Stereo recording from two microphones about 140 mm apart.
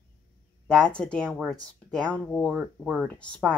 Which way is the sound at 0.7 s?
5° left (ahead or behind).